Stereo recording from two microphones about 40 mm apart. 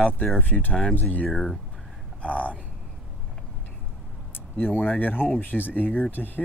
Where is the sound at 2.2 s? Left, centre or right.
Left.